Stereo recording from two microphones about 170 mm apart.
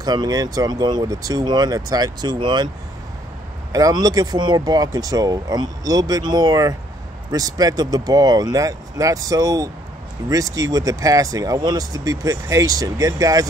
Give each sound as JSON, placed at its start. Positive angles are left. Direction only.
{"t": 0.0, "sound": "speech", "side_deg": -25}
{"t": 3.7, "sound": "speech", "side_deg": -20}